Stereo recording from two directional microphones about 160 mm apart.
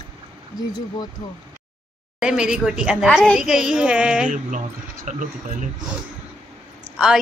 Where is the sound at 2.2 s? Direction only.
5° right (ahead or behind).